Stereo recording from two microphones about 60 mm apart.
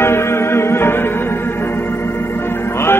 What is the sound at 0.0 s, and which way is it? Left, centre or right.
Music, left.